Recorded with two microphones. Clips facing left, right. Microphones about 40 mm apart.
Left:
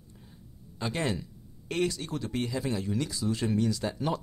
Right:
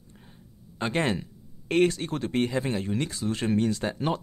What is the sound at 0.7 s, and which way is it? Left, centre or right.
Speech, right.